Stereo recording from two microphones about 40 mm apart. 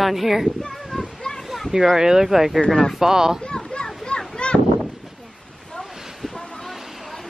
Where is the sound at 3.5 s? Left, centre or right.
Left.